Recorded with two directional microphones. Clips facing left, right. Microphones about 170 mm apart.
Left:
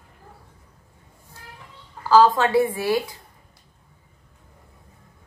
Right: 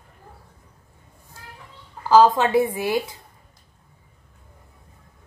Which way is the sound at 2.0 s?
20° right (ahead or behind).